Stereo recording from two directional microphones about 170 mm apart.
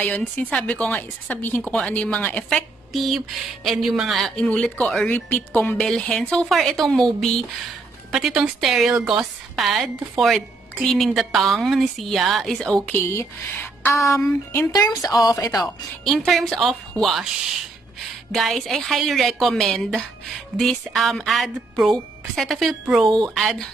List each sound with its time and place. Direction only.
0.0 s a woman's voice: 10° left (ahead or behind)
15.6 s a woman's voice: centre (ahead or behind)